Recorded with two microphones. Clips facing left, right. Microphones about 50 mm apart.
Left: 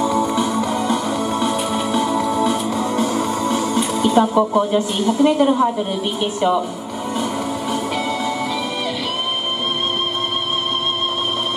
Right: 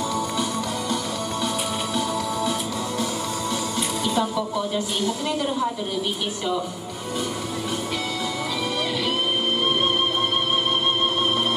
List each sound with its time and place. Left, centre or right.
0.1 s music: left
2.0 s music: left